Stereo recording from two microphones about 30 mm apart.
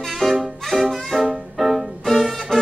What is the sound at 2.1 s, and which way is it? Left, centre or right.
Music, centre.